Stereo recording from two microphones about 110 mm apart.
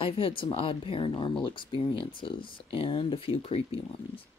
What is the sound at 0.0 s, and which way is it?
Speech, 55° left (ahead or behind).